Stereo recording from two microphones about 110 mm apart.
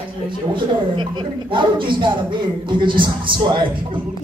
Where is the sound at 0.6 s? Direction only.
45° right (ahead or behind).